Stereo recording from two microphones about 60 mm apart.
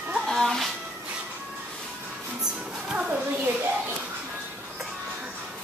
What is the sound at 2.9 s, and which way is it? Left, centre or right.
Speech, centre.